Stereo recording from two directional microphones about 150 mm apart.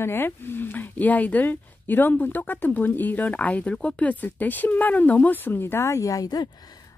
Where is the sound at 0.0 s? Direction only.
15° left (ahead or behind).